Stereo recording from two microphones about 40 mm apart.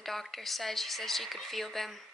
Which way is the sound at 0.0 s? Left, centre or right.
Centre.